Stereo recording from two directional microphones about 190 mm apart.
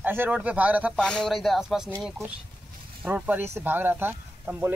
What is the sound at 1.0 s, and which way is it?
Speech, 5° left (ahead or behind).